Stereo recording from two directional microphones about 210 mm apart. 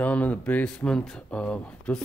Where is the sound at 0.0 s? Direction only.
5° left (ahead or behind).